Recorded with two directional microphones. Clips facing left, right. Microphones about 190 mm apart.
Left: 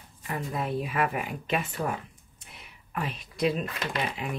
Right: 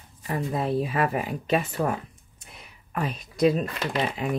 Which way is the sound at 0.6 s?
30° right (ahead or behind).